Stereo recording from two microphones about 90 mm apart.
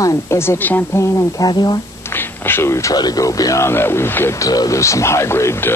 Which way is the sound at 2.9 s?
45° left (ahead or behind).